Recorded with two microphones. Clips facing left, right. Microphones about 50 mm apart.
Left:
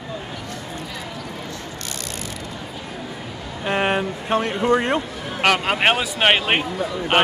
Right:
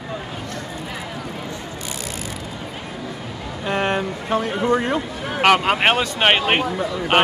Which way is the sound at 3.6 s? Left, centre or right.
Centre.